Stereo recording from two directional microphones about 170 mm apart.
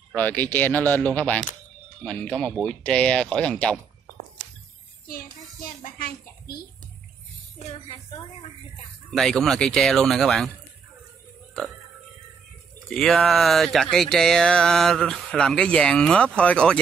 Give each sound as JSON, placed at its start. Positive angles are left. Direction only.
{"t": 0.1, "sound": "speech", "side_deg": 10}
{"t": 5.9, "sound": "speech", "side_deg": 60}
{"t": 9.1, "sound": "speech", "side_deg": 0}
{"t": 12.7, "sound": "speech", "side_deg": 5}